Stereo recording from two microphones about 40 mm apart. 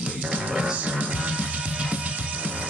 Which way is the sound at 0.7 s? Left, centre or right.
Right.